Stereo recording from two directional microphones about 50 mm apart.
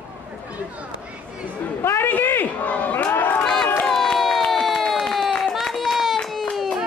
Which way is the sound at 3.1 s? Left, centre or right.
Left.